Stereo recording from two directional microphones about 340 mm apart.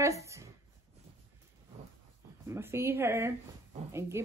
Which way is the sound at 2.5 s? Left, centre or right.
Centre.